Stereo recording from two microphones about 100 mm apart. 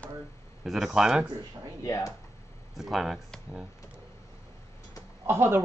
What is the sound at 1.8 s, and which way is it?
Speech, 30° left (ahead or behind).